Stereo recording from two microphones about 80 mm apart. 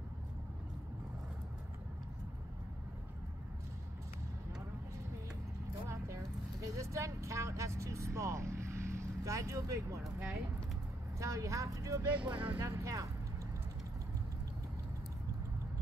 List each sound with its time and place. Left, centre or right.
5.9 s clip-clop: right
6.8 s speech: right
11.1 s speech: right
12.1 s speech: centre
12.6 s speech: right